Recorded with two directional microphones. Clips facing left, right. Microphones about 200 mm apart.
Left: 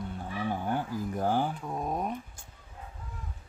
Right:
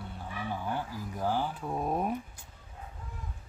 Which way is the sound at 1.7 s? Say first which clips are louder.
Right 2 dB; 5° right (ahead or behind).